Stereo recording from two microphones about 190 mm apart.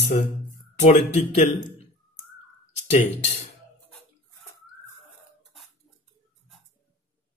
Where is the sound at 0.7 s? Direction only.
40° left (ahead or behind).